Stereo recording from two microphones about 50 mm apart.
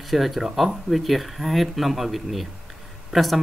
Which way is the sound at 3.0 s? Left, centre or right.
Centre.